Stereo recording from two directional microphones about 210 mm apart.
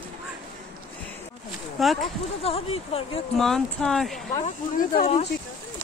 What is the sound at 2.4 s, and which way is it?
Speech, 30° left (ahead or behind).